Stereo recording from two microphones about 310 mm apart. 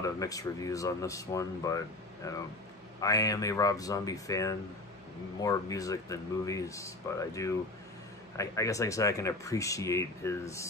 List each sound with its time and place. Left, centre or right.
0.0 s speech: centre